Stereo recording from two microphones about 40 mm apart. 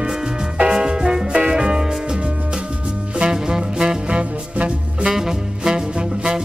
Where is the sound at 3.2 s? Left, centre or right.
Centre.